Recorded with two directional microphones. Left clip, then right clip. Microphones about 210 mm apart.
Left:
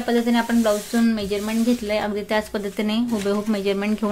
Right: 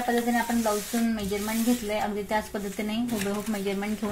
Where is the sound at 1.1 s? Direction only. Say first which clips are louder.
Left 5 dB; 40° left (ahead or behind).